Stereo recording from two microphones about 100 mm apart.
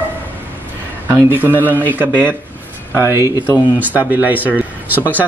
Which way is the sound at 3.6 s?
15° right (ahead or behind).